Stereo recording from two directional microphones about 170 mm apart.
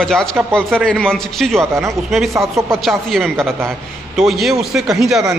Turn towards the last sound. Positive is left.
turn(degrees=0)  # may be behind; listen again after turning